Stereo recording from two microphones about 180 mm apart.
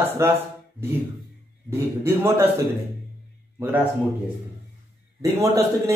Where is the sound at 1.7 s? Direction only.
15° right (ahead or behind).